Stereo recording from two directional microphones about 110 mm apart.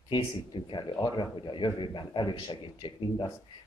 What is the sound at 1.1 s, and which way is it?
A man's voice, 45° left (ahead or behind).